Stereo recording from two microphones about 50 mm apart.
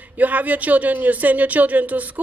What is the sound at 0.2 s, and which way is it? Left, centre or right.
Speech, right.